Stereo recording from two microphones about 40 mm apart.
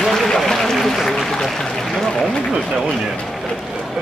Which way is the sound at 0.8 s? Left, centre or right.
Centre.